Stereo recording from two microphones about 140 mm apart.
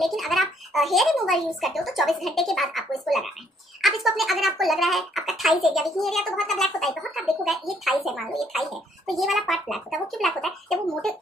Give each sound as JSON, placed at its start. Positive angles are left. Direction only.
{"t": 0.0, "sound": "speech", "side_deg": 0}